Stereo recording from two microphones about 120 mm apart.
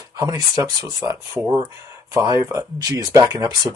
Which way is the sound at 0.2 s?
25° right (ahead or behind).